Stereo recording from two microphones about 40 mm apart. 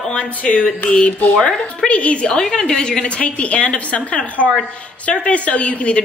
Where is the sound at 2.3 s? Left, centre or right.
Centre.